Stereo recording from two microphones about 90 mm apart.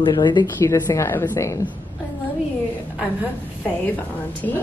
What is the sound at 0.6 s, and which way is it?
A woman's voice, 30° left (ahead or behind).